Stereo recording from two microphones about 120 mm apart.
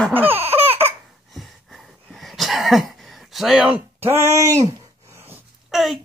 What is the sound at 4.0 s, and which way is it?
Speech, 20° right (ahead or behind).